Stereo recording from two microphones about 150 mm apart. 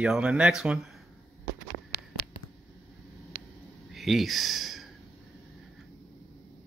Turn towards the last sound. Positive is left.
turn(degrees=0)  # may be behind; listen again after turning